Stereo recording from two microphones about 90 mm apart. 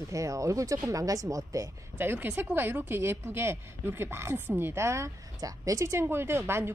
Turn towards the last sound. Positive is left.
turn(degrees=-25)  # may be behind; listen again after turning